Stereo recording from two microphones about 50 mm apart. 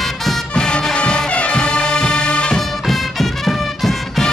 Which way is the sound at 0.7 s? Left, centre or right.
Centre.